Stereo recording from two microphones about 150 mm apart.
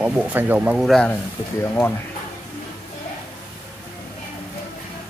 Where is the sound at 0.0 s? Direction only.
10° right (ahead or behind).